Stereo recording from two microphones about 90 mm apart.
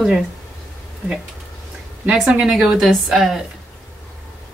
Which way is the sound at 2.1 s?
5° right (ahead or behind).